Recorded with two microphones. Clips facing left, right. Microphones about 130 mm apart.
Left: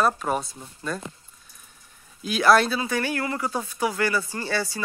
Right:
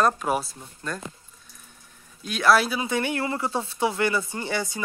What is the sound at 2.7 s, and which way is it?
Speech, 20° right (ahead or behind).